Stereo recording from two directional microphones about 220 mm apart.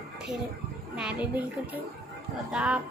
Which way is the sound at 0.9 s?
5° right (ahead or behind).